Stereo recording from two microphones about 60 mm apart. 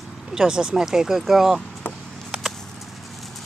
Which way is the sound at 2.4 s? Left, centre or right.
Centre.